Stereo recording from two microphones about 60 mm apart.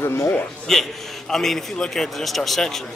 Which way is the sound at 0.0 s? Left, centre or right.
Left.